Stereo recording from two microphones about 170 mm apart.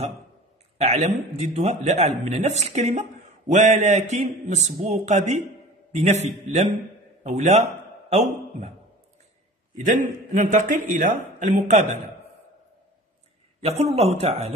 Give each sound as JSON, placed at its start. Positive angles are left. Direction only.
{"t": 0.7, "sound": "a man's voice", "side_deg": -40}
{"t": 9.8, "sound": "a man's voice", "side_deg": -45}
{"t": 13.6, "sound": "a man's voice", "side_deg": -40}